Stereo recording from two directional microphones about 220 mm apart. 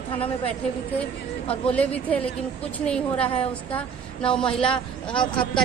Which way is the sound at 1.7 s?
5° left (ahead or behind).